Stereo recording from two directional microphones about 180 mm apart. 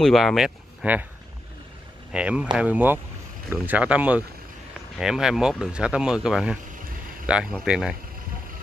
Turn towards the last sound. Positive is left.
turn(degrees=-5)  # may be behind; listen again after turning